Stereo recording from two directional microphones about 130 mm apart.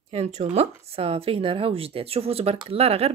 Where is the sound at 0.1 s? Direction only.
60° right (ahead or behind).